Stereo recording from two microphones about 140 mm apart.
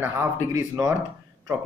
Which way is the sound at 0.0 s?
20° right (ahead or behind).